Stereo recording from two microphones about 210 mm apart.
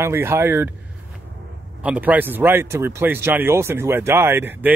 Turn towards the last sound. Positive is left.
turn(degrees=-10)  # may be behind; listen again after turning